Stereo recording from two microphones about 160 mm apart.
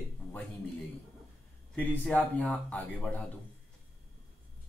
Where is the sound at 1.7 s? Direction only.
10° left (ahead or behind).